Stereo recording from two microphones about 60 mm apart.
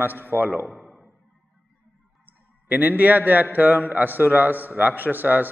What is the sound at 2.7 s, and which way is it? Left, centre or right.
A man's voice, right.